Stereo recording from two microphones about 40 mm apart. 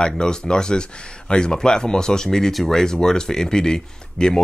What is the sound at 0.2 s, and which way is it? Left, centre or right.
Speech, left.